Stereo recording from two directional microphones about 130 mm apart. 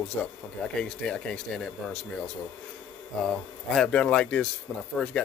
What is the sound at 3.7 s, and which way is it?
Speech, 5° left (ahead or behind).